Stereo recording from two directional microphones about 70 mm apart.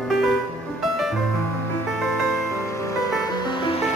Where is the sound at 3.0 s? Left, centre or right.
Left.